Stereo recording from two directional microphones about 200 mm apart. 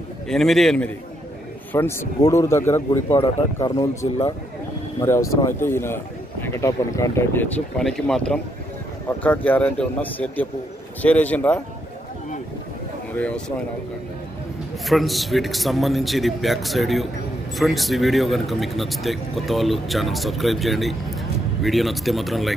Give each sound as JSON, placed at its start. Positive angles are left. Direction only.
{"t": 0.3, "sound": "speech", "side_deg": 0}
{"t": 14.9, "sound": "speech", "side_deg": 0}